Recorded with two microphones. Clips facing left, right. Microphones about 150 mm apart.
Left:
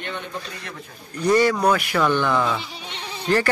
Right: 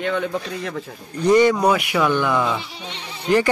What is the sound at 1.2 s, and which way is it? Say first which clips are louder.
Speech: right 3 dB; 20° right (ahead or behind).